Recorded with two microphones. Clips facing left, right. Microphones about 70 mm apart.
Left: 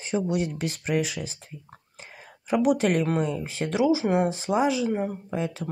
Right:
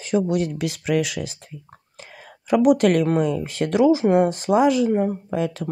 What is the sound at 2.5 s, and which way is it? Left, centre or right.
Speech, right.